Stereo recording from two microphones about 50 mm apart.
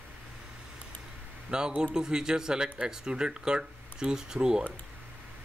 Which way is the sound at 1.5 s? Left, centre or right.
Centre.